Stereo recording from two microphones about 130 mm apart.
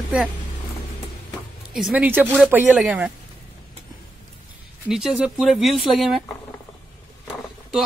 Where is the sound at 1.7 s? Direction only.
5° right (ahead or behind).